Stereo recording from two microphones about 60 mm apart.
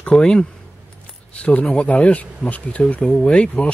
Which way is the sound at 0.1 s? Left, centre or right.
Centre.